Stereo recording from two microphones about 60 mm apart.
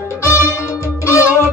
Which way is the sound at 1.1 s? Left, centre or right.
Left.